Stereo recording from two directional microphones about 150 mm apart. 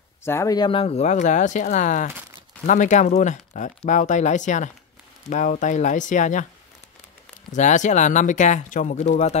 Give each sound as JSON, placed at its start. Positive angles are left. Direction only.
{"t": 0.2, "sound": "speech", "side_deg": 15}
{"t": 0.7, "sound": "speech", "side_deg": 40}
{"t": 7.5, "sound": "speech", "side_deg": 55}